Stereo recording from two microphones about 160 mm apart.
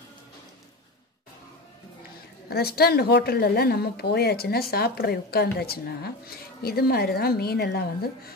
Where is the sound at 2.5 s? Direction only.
75° left (ahead or behind).